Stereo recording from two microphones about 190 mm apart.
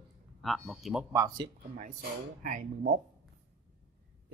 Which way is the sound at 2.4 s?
45° right (ahead or behind).